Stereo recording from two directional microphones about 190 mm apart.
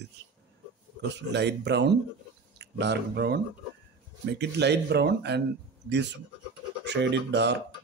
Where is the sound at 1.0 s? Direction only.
65° right (ahead or behind).